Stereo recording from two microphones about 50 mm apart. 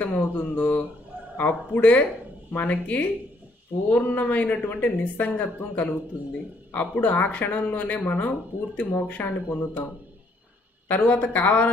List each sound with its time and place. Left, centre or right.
0.0 s speech: left
10.9 s speech: left